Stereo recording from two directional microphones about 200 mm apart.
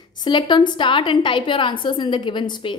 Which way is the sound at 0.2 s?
20° left (ahead or behind).